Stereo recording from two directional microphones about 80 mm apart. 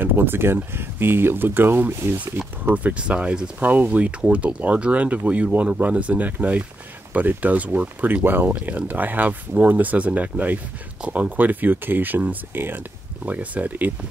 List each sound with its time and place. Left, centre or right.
0.0 s speech: right